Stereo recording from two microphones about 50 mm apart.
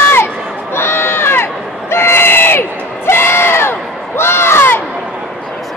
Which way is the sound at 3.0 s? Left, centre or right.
Left.